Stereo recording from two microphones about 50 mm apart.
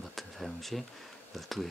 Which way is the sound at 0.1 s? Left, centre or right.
Centre.